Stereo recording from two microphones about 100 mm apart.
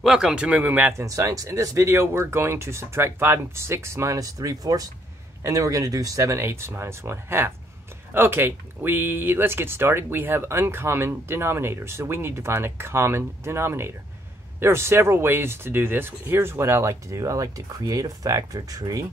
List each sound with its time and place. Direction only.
0.0 s speech: 5° right (ahead or behind)
0.9 s speech: 35° right (ahead or behind)